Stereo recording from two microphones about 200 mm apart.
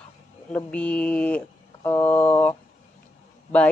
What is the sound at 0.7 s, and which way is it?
Speech, 5° left (ahead or behind).